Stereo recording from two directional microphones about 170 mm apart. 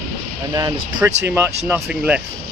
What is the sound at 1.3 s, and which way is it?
Speech, 10° right (ahead or behind).